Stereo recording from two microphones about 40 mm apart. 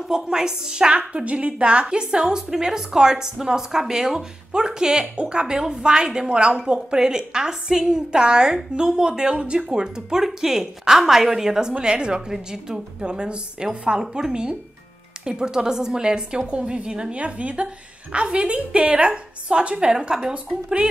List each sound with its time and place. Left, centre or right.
0.1 s a woman's voice: centre
0.9 s a woman's voice: right
9.7 s a woman's voice: centre